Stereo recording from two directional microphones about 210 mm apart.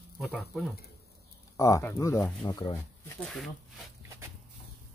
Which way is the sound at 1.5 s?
15° left (ahead or behind).